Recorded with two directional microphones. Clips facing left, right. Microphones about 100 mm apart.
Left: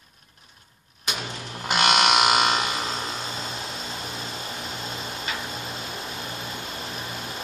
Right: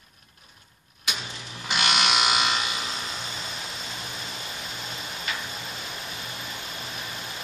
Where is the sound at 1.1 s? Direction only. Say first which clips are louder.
Left 4 dB; 50° left (ahead or behind).